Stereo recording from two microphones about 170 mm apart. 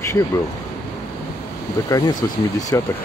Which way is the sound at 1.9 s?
20° left (ahead or behind).